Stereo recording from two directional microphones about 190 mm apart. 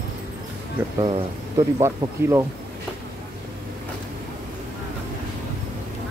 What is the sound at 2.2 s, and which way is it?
Speech, 15° right (ahead or behind).